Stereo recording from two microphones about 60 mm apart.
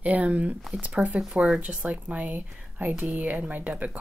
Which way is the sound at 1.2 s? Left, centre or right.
Centre.